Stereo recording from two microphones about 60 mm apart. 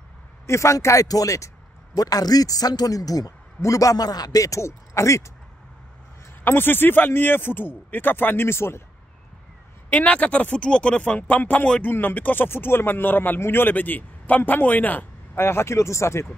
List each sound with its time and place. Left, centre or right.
0.5 s speech: left
0.7 s speech: left
2.0 s speech: left
6.4 s speech: left
9.8 s speech: left
11.9 s speech: left
15.3 s speech: left